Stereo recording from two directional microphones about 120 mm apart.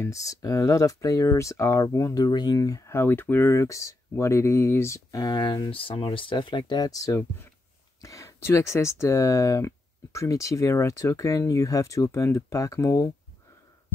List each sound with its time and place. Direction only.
0.0 s speech: 25° left (ahead or behind)